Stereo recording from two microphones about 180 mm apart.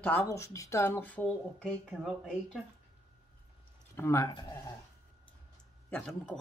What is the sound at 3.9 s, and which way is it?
Speech, 15° left (ahead or behind).